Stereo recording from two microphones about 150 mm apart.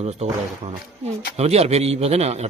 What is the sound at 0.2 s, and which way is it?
A man's voice, 50° right (ahead or behind).